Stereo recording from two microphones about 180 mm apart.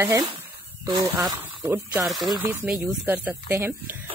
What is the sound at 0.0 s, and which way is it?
Speech, 15° right (ahead or behind).